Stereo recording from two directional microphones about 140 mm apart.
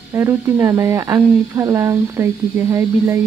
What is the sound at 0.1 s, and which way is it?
Speech, 20° right (ahead or behind).